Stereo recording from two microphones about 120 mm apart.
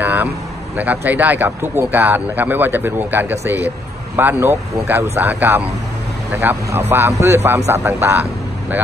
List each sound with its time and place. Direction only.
0.0 s vehicle: 15° right (ahead or behind)
0.7 s speech: 15° right (ahead or behind)